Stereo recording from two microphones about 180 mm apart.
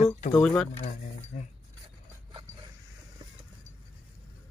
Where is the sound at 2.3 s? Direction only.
25° right (ahead or behind).